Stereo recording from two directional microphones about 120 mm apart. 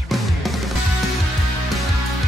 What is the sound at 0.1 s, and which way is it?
Music, centre (ahead or behind).